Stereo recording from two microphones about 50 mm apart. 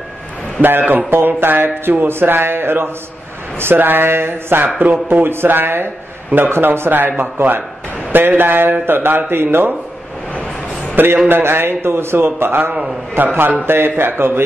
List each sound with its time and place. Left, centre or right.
0.6 s a man's voice: right
7.3 s a man's voice: right
11.2 s a man's voice: right
13.2 s a man's voice: right